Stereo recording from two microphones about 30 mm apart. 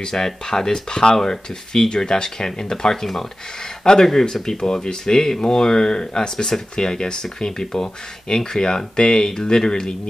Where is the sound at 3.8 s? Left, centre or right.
Left.